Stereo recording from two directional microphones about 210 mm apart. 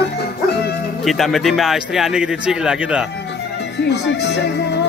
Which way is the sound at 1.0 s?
Centre (ahead or behind).